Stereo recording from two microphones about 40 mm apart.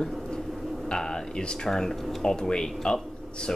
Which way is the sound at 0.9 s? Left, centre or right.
Centre.